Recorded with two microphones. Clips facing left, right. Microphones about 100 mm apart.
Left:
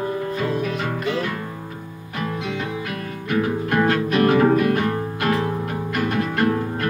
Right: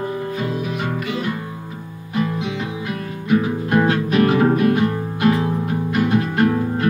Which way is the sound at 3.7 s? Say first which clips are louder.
Right 4 dB; 20° right (ahead or behind).